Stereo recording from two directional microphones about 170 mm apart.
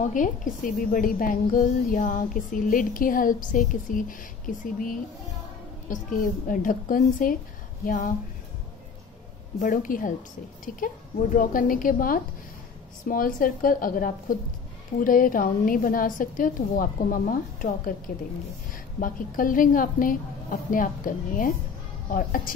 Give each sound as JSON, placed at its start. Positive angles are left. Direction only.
{"t": 0.0, "sound": "a woman's voice", "side_deg": 50}
{"t": 9.6, "sound": "a woman's voice", "side_deg": 50}
{"t": 11.3, "sound": "a woman's voice", "side_deg": 55}
{"t": 18.9, "sound": "a woman's voice", "side_deg": 55}